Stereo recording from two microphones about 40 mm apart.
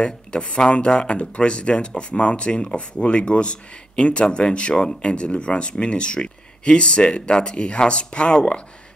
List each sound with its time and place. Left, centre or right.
0.0 s speech: left